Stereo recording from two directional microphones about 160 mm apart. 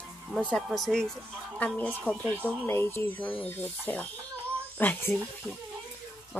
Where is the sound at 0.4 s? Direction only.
5° left (ahead or behind).